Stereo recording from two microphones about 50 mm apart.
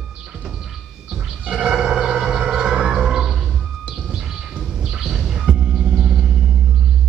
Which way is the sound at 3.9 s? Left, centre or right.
Centre.